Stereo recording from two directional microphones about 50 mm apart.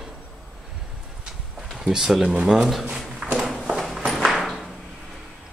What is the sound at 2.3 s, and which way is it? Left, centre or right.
Speech, centre.